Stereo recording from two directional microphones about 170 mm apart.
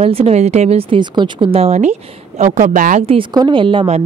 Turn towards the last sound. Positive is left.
turn(degrees=-30)  # may be behind; listen again after turning